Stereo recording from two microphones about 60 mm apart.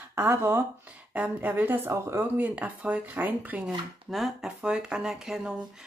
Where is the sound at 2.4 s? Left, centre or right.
Right.